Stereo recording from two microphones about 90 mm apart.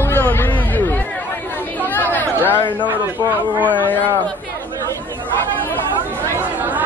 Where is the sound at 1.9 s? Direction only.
20° left (ahead or behind).